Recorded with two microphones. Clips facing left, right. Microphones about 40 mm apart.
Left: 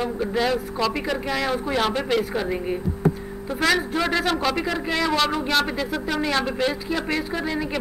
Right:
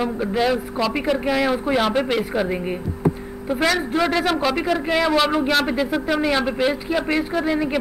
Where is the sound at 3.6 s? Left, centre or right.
Centre.